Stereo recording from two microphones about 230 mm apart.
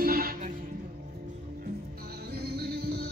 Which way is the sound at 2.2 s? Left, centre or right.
Right.